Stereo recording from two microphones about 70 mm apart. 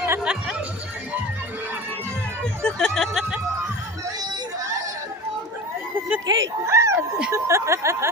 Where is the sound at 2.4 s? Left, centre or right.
Centre.